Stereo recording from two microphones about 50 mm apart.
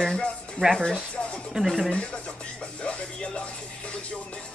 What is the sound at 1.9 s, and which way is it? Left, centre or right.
Speech, centre.